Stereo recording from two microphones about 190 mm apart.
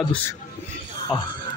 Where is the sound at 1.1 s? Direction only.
5° right (ahead or behind).